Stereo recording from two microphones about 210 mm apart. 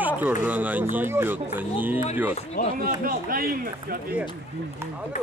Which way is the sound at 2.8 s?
45° right (ahead or behind).